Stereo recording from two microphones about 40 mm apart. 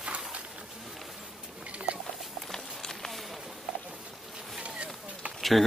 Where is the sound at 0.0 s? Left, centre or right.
Right.